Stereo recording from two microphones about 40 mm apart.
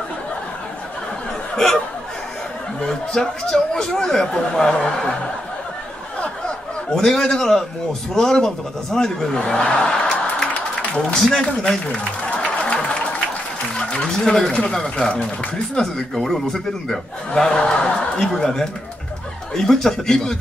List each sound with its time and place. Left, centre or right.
2.8 s speech: centre
6.9 s speech: centre
9.6 s music: left
11.2 s speech: centre
12.7 s applause: centre
13.7 s speech: centre
16.3 s speech: centre